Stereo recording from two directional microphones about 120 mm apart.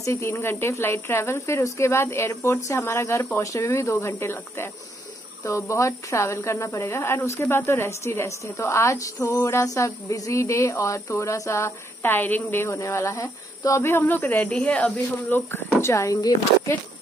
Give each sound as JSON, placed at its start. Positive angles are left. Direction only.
{"t": 0.0, "sound": "a woman's voice", "side_deg": 25}